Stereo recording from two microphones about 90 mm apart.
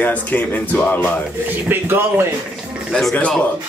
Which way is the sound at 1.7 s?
25° right (ahead or behind).